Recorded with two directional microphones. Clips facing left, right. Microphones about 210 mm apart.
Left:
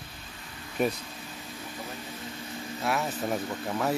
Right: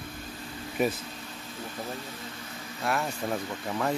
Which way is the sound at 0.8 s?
Centre (ahead or behind).